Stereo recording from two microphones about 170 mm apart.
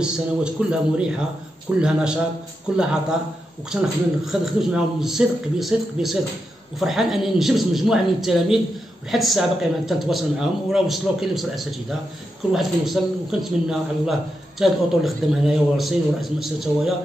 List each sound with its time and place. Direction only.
0.0 s speech: 5° right (ahead or behind)